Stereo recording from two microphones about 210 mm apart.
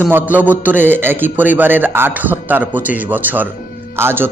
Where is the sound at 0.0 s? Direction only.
10° right (ahead or behind).